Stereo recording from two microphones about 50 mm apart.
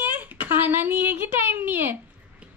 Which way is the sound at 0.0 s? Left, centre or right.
Right.